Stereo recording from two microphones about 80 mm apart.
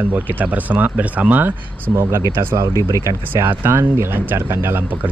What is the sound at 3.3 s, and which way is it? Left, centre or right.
Speech, right.